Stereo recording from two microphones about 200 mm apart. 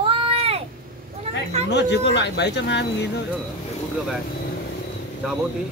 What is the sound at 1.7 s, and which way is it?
Speech, 60° left (ahead or behind).